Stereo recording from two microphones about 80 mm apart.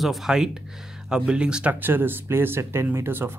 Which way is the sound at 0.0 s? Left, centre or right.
Centre.